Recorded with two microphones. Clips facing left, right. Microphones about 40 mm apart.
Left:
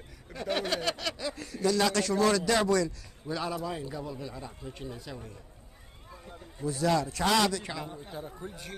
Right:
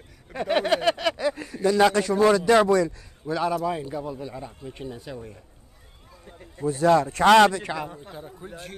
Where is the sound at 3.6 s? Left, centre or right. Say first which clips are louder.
Right 7 dB; right.